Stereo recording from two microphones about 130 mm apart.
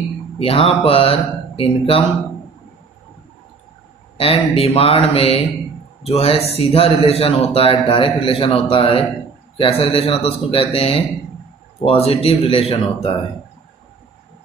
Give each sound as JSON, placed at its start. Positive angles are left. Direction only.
{"t": 0.4, "sound": "a man's voice", "side_deg": 45}
{"t": 4.2, "sound": "a man's voice", "side_deg": 45}